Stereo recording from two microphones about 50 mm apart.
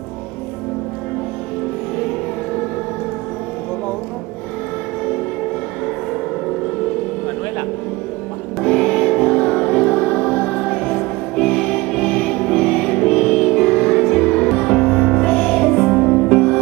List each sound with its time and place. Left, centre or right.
8.6 s music: centre
9.7 s music: left
11.3 s music: centre
15.5 s music: centre